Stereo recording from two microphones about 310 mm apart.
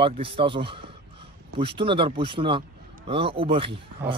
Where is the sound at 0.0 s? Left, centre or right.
Centre.